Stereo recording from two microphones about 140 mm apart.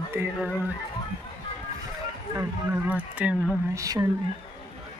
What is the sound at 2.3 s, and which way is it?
Speech, 10° right (ahead or behind).